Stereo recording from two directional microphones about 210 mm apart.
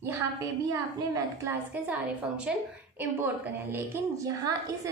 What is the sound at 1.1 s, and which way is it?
A woman's voice, 15° right (ahead or behind).